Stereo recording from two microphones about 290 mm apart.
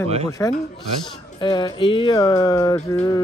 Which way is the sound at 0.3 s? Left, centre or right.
Centre.